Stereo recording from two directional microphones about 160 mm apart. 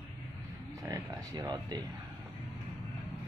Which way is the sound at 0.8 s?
20° right (ahead or behind).